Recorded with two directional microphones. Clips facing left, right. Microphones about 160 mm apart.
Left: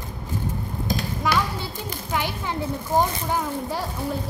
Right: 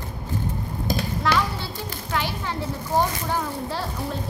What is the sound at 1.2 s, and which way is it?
Children playing, 15° left (ahead or behind).